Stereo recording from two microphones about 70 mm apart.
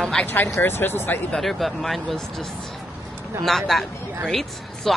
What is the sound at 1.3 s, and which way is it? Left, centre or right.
Speech, centre.